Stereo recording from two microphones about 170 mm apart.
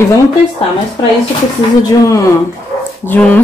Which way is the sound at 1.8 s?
20° left (ahead or behind).